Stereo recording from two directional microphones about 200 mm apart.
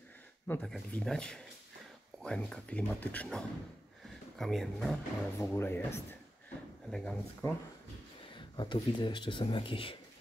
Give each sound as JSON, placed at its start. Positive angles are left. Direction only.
{"t": 0.5, "sound": "speech", "side_deg": 5}
{"t": 8.5, "sound": "speech", "side_deg": 25}